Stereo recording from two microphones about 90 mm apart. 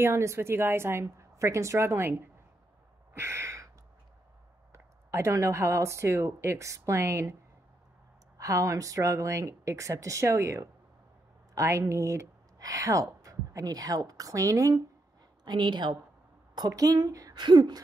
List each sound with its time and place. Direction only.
0.0 s a woman's voice: 30° right (ahead or behind)
3.2 s a sound: 30° right (ahead or behind)
4.7 s speech: 35° right (ahead or behind)
8.4 s a woman's voice: 35° right (ahead or behind)
15.4 s a woman's voice: 55° right (ahead or behind)
16.5 s a woman's voice: 40° right (ahead or behind)
17.4 s a woman's voice: 55° right (ahead or behind)